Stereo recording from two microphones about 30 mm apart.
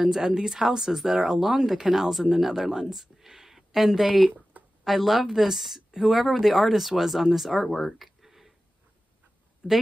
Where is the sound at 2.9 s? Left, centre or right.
Centre.